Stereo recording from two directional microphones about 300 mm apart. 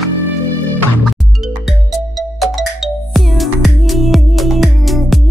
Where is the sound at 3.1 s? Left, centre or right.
Centre.